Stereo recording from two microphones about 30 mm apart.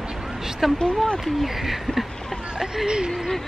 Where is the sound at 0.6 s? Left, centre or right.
Centre.